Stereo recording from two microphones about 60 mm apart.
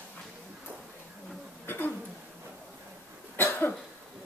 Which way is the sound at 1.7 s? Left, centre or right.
Left.